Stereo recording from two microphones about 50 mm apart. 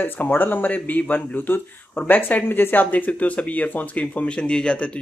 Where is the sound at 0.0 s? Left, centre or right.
Left.